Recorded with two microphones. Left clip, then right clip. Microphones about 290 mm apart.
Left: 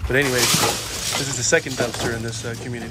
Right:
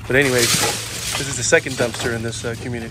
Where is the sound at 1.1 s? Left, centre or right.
Left.